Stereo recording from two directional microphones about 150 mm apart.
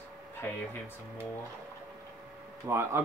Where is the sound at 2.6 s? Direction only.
15° right (ahead or behind).